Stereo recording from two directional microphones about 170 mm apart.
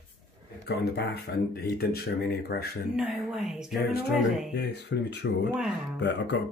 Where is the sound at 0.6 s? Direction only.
85° left; by 2.7 s 65° left (ahead or behind).